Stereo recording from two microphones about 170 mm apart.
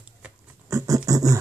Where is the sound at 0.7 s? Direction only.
20° right (ahead or behind).